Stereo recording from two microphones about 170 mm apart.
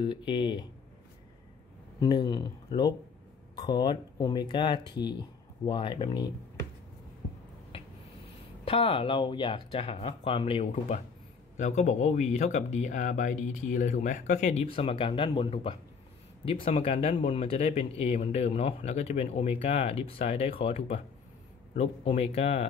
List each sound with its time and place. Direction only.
0.0 s speech: 30° left (ahead or behind)
2.0 s speech: 25° left (ahead or behind)
7.7 s a sound: 30° left (ahead or behind)
8.6 s speech: 30° left (ahead or behind)